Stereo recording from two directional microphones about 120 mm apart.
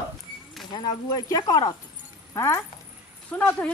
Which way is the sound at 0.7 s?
35° left (ahead or behind).